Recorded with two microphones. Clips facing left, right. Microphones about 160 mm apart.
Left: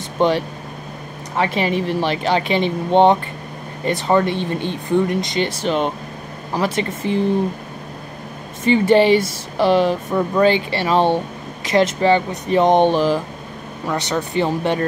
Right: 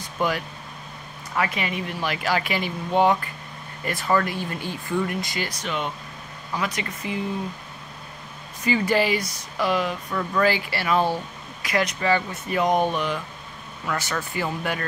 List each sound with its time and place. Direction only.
0.2 s speech: 25° left (ahead or behind)
8.6 s speech: 25° left (ahead or behind)
13.8 s speech: 20° left (ahead or behind)